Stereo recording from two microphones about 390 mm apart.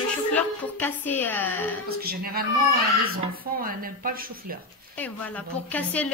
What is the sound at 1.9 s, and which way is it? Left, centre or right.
Speech, right.